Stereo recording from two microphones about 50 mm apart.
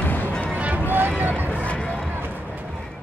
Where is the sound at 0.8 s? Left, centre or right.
Right.